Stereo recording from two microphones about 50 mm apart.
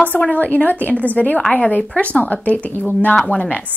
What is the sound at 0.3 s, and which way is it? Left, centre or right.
A woman's voice, left.